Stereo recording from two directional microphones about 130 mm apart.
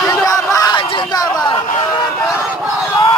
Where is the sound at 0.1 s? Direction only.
25° left (ahead or behind).